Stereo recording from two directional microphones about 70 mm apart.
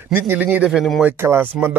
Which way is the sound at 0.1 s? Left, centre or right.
Right.